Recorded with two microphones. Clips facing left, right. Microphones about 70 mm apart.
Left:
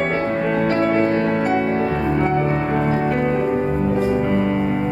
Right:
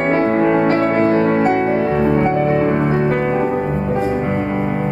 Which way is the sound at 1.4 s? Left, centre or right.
Right.